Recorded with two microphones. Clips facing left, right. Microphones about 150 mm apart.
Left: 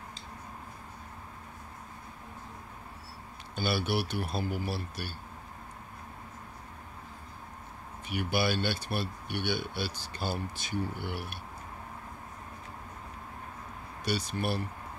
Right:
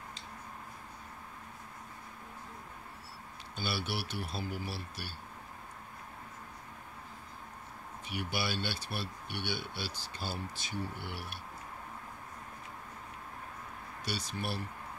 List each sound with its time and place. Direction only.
3.5 s speech: 55° left (ahead or behind)
8.1 s speech: 55° left (ahead or behind)
14.0 s speech: 55° left (ahead or behind)